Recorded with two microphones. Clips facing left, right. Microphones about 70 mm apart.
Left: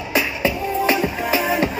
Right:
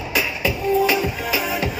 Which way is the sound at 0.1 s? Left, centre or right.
Left.